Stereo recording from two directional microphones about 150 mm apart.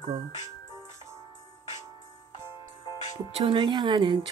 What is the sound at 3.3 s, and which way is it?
Speech, 40° right (ahead or behind).